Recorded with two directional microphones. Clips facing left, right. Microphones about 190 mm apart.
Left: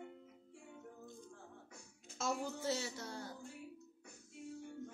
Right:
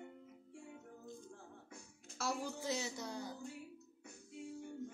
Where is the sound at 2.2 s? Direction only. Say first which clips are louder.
Left 1 dB; 10° right (ahead or behind).